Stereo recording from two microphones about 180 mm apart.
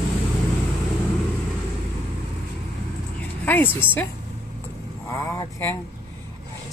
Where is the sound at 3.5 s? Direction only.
10° left (ahead or behind).